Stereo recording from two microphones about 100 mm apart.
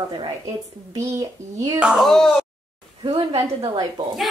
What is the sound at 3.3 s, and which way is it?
Speech, 35° right (ahead or behind).